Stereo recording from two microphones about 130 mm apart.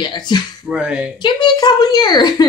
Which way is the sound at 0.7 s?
10° right (ahead or behind).